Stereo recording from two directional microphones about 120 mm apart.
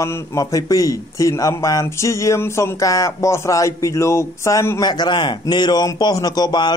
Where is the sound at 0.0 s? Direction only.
30° left (ahead or behind).